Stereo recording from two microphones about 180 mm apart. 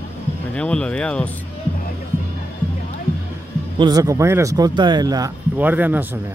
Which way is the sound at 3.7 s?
25° right (ahead or behind).